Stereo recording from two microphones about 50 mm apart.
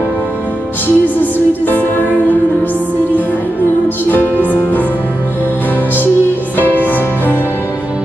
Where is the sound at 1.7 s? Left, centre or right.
Left.